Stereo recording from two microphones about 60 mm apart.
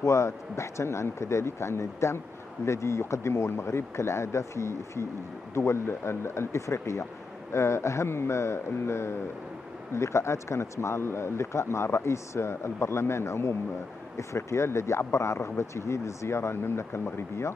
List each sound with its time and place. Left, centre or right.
0.0 s speech: left